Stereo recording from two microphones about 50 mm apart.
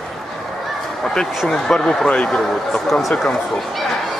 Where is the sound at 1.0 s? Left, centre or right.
Centre.